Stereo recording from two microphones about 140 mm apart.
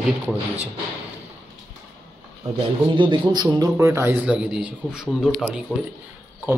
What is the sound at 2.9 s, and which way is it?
Speech, 35° right (ahead or behind).